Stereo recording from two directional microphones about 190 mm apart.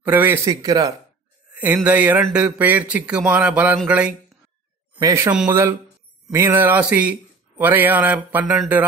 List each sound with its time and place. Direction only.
0.0 s speech: 10° right (ahead or behind)
4.9 s speech: 20° right (ahead or behind)
5.3 s speech: 10° right (ahead or behind)